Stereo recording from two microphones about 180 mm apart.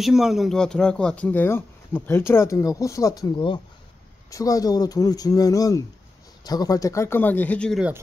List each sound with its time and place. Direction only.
0.0 s speech: 5° right (ahead or behind)